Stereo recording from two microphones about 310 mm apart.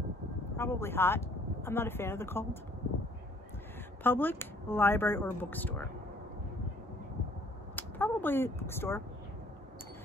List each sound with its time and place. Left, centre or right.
0.6 s speech: centre
4.0 s speech: centre
7.7 s speech: centre